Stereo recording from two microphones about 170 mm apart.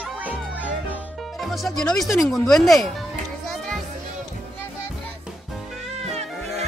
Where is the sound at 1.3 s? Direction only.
Centre (ahead or behind).